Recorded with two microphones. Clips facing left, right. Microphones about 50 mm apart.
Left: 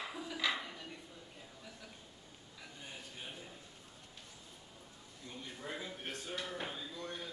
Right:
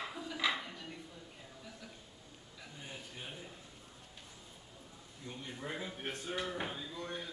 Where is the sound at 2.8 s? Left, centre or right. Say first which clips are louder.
Right 1 dB; centre.